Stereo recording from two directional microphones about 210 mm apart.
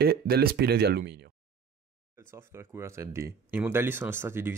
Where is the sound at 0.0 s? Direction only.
45° right (ahead or behind).